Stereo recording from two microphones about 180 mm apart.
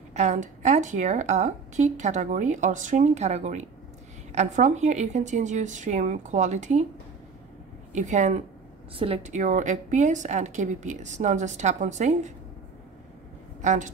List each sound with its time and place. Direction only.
0.1 s a woman's voice: 40° right (ahead or behind)
7.9 s a woman's voice: 40° right (ahead or behind)
13.6 s speech: 45° right (ahead or behind)